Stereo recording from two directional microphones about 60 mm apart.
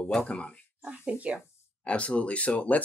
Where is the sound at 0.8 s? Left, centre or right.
Right.